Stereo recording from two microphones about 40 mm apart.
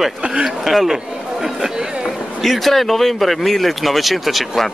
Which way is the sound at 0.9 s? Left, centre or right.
Centre.